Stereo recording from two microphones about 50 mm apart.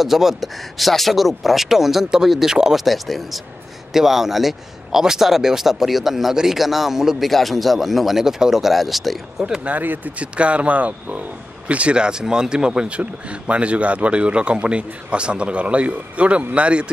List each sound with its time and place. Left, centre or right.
0.0 s speech: centre
9.7 s speech: right